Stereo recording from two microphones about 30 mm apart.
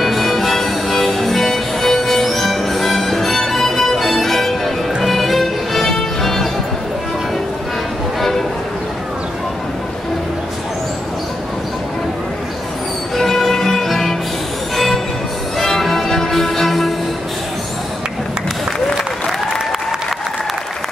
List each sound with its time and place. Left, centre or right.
0.0 s music: centre
13.1 s music: centre
15.6 s music: centre